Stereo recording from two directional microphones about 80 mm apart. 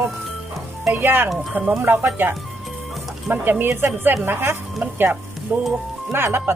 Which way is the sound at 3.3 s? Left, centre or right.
Right.